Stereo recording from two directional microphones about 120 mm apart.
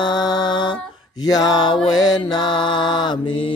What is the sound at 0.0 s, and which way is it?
Mantra, 35° left (ahead or behind).